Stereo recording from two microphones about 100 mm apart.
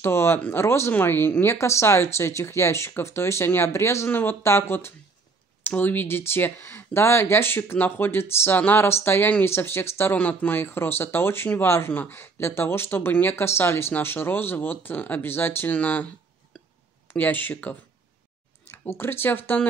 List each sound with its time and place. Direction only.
0.0 s speech: 25° left (ahead or behind)
17.1 s speech: 20° left (ahead or behind)